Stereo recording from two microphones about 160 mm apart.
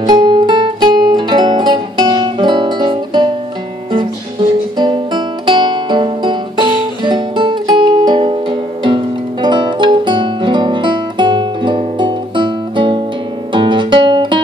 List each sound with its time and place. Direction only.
0.0 s music: 30° right (ahead or behind)
4.7 s music: 30° right (ahead or behind)